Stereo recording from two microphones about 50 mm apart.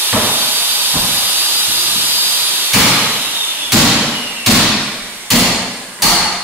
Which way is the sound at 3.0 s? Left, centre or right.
Right.